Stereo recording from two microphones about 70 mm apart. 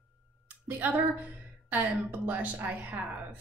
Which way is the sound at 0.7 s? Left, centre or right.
Right.